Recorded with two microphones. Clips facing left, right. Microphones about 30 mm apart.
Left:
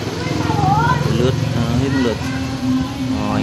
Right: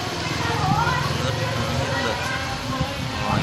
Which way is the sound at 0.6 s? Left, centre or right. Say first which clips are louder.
Left 7 dB; left.